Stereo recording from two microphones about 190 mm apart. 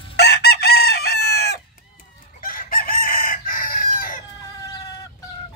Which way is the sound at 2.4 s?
50° left (ahead or behind).